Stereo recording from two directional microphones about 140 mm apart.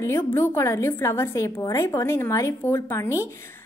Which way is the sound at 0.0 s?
15° left (ahead or behind).